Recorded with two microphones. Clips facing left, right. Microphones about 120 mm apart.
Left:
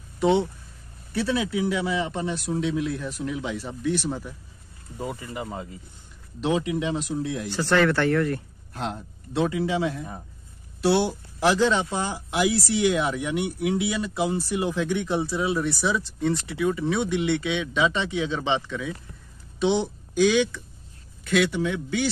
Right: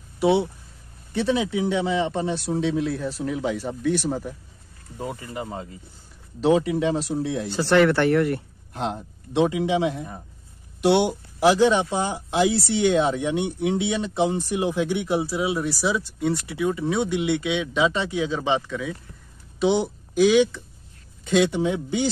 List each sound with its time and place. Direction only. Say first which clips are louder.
0.2 s speech: right 1 dB; 10° right (ahead or behind); by 4.4 s 45° right (ahead or behind)
4.9 s speech: right 1 dB; centre (ahead or behind)
6.4 s speech: right 5 dB; 40° right (ahead or behind)
7.4 s speech: right 3 dB; 20° right (ahead or behind)
21.3 s speech: right 3 dB; 30° right (ahead or behind)